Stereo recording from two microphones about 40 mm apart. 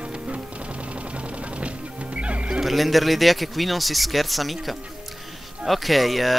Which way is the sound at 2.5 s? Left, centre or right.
Centre.